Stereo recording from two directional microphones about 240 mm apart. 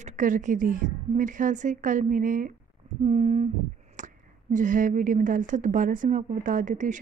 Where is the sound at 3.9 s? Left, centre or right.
Right.